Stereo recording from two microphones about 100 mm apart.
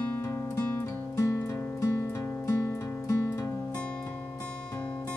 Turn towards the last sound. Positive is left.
turn(degrees=30)  # may be behind; listen again after turning